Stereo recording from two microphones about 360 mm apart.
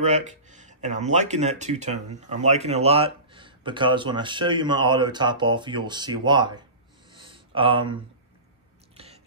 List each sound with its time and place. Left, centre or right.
0.0 s speech: centre
7.1 s a sound: centre
8.9 s whispering: centre